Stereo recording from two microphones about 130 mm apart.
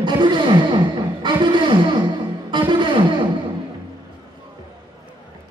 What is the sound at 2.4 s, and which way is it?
Music, 35° right (ahead or behind).